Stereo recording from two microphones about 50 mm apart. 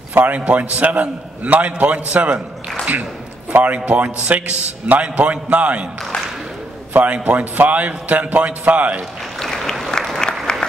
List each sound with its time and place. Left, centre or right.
0.2 s a man's voice: right
6.9 s a man's voice: right
9.4 s applause: centre